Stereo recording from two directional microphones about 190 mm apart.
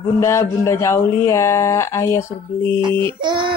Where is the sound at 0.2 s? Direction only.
15° left (ahead or behind).